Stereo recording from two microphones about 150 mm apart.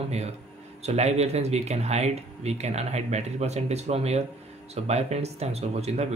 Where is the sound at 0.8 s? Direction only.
45° right (ahead or behind).